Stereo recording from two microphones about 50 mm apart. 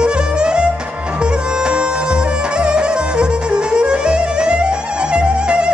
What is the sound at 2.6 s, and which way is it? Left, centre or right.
Music, centre.